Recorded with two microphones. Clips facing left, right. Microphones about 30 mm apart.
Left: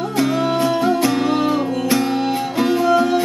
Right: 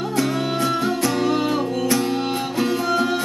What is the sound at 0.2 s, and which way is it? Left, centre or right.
Music, centre.